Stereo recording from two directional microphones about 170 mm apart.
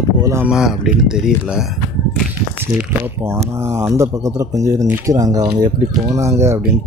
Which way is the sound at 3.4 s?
15° right (ahead or behind).